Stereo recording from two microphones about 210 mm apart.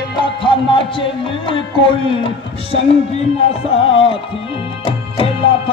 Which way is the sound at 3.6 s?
25° left (ahead or behind).